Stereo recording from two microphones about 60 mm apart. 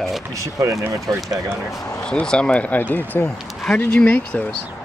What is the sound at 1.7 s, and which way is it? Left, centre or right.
Speech, left.